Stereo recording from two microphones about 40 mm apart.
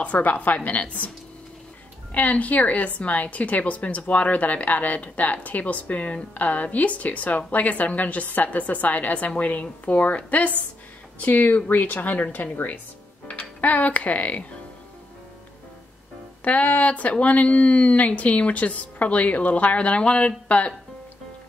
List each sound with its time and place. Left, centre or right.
0.0 s speech: left
2.1 s speech: left
13.3 s a child's voice: left
16.4 s speech: left